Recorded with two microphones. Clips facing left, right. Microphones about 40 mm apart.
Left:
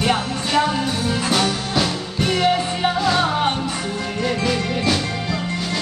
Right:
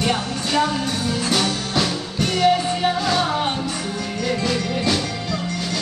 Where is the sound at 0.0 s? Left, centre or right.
Centre.